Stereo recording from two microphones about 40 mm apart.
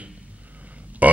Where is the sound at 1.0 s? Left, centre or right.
Right.